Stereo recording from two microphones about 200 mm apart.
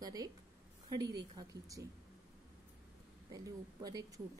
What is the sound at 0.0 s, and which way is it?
Speech, 20° right (ahead or behind).